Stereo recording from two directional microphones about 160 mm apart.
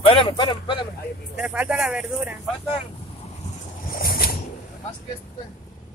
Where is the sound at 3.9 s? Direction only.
65° left (ahead or behind).